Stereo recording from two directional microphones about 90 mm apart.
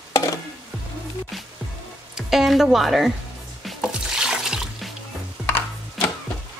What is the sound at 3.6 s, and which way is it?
Music, 5° right (ahead or behind).